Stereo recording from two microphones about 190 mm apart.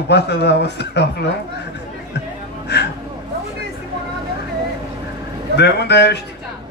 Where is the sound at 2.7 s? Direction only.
65° left (ahead or behind).